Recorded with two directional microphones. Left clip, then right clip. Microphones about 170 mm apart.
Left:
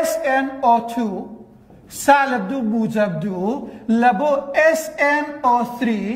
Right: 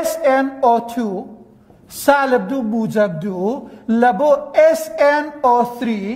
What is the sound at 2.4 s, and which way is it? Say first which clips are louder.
A man's voice: right 1 dB; 30° right (ahead or behind).